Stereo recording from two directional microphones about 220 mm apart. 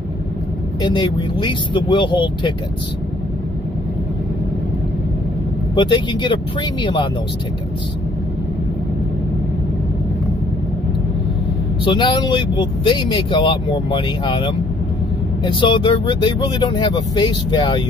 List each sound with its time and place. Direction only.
0.8 s speech: 20° left (ahead or behind)
5.8 s speech: 20° left (ahead or behind)
11.8 s speech: 20° left (ahead or behind)